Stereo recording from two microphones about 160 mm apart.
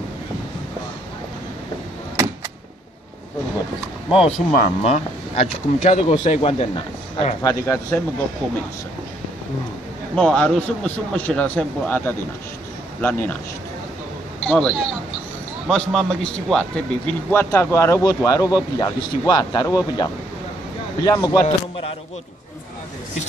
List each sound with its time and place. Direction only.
4.1 s a man's voice: 40° left (ahead or behind)
7.4 s a man's voice: 20° left (ahead or behind)
10.1 s a man's voice: 5° left (ahead or behind)
14.4 s a man's voice: 5° left (ahead or behind); by 21.5 s 20° left (ahead or behind)